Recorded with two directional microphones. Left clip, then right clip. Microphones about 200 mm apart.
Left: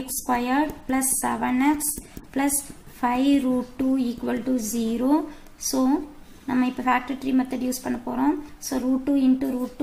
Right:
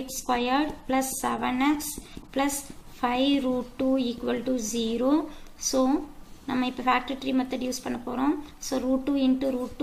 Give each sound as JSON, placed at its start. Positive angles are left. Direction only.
{"t": 0.3, "sound": "a woman's voice", "side_deg": 55}